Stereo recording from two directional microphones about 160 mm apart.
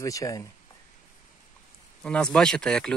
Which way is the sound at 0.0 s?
20° left (ahead or behind).